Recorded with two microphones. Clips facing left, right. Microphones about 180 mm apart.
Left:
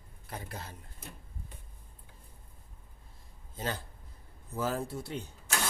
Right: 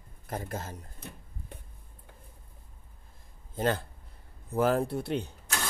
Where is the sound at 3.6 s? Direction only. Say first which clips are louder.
Right 8 dB; 55° right (ahead or behind).